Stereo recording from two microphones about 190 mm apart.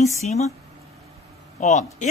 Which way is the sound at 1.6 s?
40° left (ahead or behind).